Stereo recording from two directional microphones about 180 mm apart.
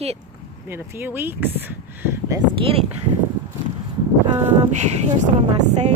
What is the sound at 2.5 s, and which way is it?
Speech, 30° right (ahead or behind).